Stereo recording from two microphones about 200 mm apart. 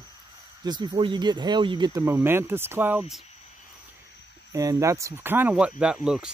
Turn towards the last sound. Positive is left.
turn(degrees=-5)  # may be behind; listen again after turning